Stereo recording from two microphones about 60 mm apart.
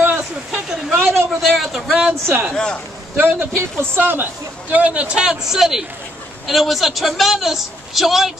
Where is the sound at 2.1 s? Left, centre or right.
Right.